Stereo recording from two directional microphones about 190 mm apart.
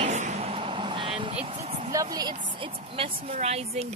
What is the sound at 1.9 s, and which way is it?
A woman's voice, 20° right (ahead or behind).